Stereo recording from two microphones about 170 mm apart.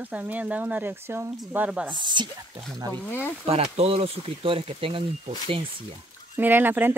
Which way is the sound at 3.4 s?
35° right (ahead or behind).